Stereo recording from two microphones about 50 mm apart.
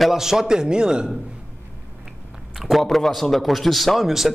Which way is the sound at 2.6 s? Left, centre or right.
Centre.